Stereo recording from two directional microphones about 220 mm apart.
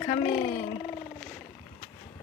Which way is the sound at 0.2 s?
35° left (ahead or behind).